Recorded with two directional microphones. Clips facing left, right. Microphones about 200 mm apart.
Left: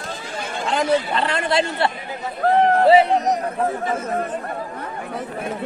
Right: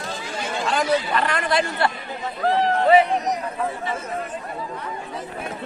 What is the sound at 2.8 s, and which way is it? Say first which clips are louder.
Speech: left 1 dB; 30° left (ahead or behind).